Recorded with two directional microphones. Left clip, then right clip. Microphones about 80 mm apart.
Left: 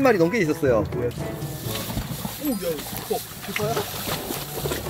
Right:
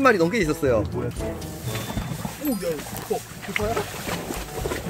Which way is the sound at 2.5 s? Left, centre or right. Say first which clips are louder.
Even; centre.